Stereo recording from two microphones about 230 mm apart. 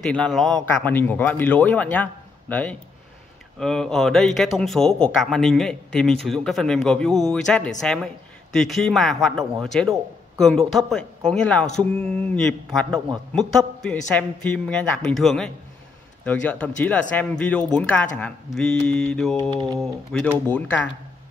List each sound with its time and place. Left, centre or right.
0.0 s speech: centre
19.5 s speech: centre
19.8 s speech: centre